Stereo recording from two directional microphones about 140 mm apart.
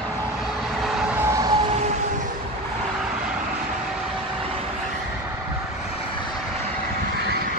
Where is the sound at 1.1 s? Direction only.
20° right (ahead or behind).